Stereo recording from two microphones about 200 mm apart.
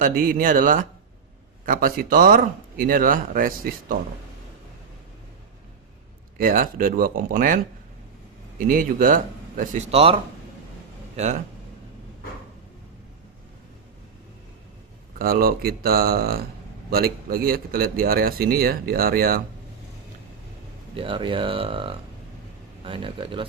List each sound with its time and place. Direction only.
0.0 s speech: 45° right (ahead or behind)
6.3 s a man's voice: 45° right (ahead or behind)
15.1 s speech: 45° right (ahead or behind)
20.9 s speech: 25° right (ahead or behind)